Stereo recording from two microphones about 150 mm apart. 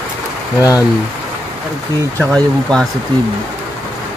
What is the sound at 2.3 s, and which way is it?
Speech, 5° left (ahead or behind).